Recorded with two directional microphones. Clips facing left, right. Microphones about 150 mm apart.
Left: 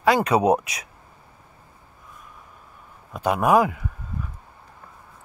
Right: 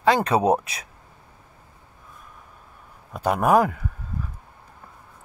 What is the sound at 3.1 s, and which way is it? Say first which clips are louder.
Speech: even; 40° right (ahead or behind).